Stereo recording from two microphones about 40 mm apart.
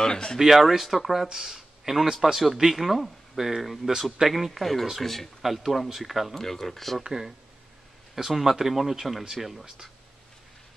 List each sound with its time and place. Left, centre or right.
0.0 s speech: centre
0.4 s speech: centre
5.4 s speech: centre
6.3 s speech: centre
7.0 s speech: centre
8.1 s speech: centre